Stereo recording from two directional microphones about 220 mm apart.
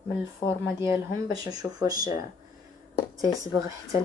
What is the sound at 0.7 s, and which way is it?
Speech, 15° right (ahead or behind).